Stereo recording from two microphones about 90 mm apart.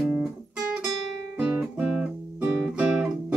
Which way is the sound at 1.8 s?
15° right (ahead or behind).